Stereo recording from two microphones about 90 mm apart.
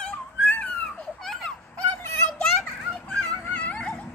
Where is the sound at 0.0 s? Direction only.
15° left (ahead or behind).